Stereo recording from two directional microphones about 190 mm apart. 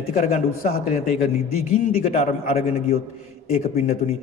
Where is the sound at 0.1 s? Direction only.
40° left (ahead or behind).